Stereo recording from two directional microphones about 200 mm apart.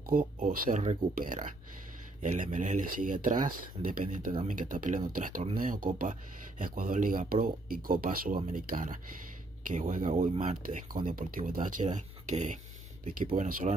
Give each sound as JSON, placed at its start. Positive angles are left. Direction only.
{"t": 0.0, "sound": "speech", "side_deg": -45}
{"t": 4.3, "sound": "speech", "side_deg": -30}
{"t": 4.6, "sound": "speech", "side_deg": -40}